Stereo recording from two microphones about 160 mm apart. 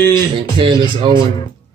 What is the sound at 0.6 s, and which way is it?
Speech, 30° right (ahead or behind).